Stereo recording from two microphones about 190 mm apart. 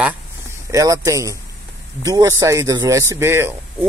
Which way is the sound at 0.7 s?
15° right (ahead or behind).